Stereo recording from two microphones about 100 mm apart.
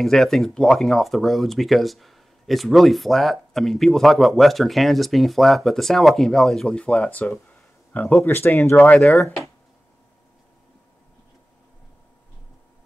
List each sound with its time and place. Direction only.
0.0 s speech: 5° left (ahead or behind)
9.2 s speech: centre (ahead or behind)